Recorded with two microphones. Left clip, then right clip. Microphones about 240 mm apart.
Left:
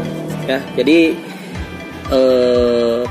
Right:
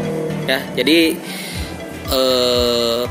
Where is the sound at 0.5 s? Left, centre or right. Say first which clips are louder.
Left 2 dB; left.